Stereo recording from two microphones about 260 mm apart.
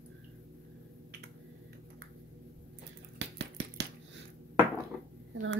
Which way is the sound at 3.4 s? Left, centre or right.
Right.